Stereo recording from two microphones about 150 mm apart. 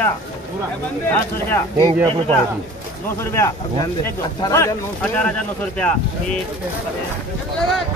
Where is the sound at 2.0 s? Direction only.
40° right (ahead or behind).